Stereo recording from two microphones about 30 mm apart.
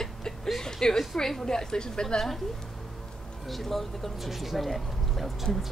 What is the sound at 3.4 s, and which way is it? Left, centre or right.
Speech, centre.